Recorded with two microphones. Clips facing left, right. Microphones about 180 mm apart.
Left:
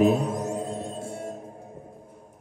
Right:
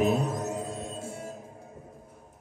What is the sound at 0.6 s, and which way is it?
Music, 30° left (ahead or behind).